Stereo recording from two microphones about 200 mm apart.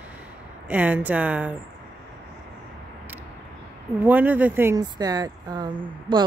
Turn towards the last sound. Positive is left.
turn(degrees=-25)  # may be behind; listen again after turning